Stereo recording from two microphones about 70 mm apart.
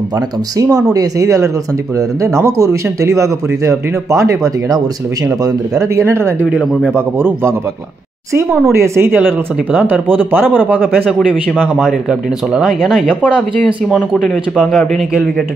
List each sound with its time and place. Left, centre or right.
0.6 s speech: right
8.7 s speech: right
11.4 s speech: centre
11.8 s speech: centre
13.1 s speech: centre